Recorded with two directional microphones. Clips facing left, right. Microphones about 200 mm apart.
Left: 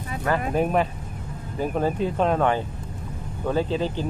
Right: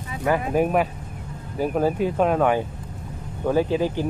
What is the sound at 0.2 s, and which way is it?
Speech, 10° right (ahead or behind).